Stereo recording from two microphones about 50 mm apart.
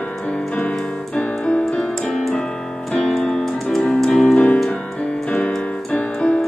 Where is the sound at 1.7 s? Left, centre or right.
Centre.